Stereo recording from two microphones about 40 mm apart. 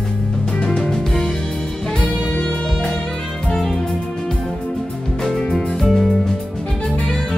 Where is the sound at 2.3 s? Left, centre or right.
Left.